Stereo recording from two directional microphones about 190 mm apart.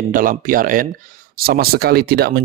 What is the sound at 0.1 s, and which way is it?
Speech, 45° right (ahead or behind).